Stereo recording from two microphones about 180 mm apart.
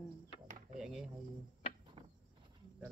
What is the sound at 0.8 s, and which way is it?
Speech, centre (ahead or behind).